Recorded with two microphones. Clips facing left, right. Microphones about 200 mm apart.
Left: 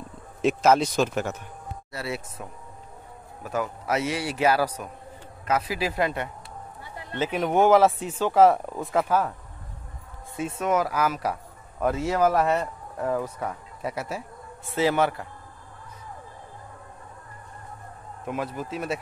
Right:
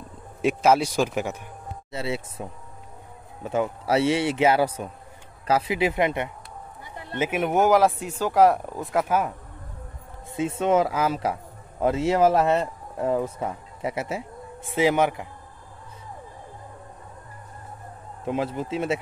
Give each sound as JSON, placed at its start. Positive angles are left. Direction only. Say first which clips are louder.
{"t": 0.4, "sound": "speech", "louder": "even", "side_deg": -10}
{"t": 1.9, "sound": "a man's voice", "louder": "right 4 dB", "side_deg": -25}
{"t": 7.2, "sound": "speech", "louder": "even", "side_deg": -5}
{"t": 10.3, "sound": "a man's voice", "louder": "right 4 dB", "side_deg": -25}
{"t": 18.2, "sound": "a man's voice", "louder": "right 4 dB", "side_deg": -25}